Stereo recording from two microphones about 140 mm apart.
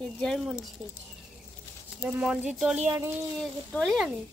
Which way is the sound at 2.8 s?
15° right (ahead or behind).